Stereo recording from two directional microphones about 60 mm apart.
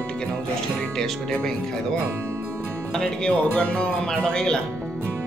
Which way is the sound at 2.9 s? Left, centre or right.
Centre.